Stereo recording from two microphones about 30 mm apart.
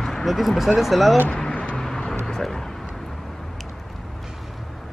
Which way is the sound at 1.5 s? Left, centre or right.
Left.